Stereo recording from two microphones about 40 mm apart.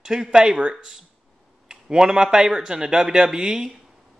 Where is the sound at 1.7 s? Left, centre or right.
Centre.